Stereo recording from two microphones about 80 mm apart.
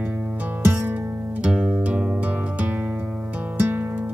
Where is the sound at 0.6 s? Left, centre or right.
Right.